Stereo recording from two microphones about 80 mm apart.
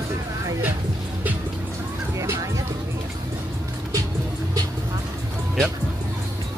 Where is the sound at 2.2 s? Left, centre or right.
Right.